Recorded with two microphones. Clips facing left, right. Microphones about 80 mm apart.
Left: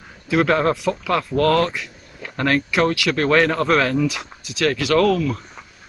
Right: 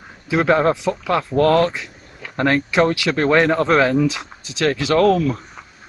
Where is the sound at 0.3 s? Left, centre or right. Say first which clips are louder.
Right 2 dB; right.